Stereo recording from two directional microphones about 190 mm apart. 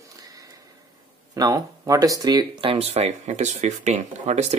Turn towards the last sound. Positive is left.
turn(degrees=-35)  # may be behind; listen again after turning